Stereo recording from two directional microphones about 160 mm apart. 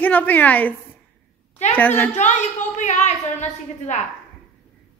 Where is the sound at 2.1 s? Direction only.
45° left (ahead or behind).